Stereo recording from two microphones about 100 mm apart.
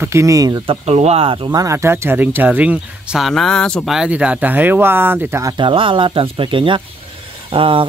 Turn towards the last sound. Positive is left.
turn(degrees=-60)  # may be behind; listen again after turning